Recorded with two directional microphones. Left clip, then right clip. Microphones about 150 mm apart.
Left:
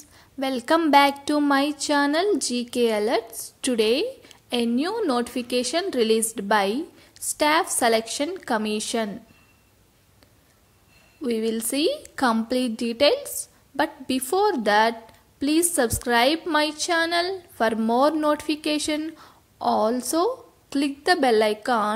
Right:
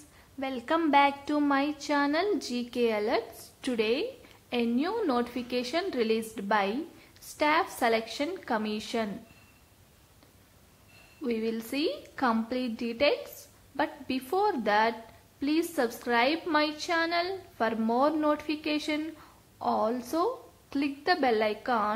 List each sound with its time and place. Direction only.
0.4 s speech: 45° left (ahead or behind)
11.2 s speech: 35° left (ahead or behind)